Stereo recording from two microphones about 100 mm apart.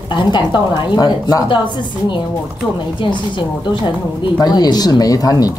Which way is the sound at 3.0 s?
50° left (ahead or behind).